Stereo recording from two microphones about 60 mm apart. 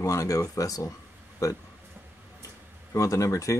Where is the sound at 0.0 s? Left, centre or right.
Left.